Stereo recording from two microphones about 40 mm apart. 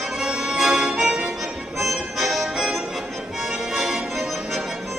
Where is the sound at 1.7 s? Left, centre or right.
Centre.